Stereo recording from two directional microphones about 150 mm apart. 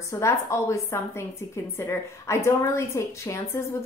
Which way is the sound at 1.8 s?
20° left (ahead or behind).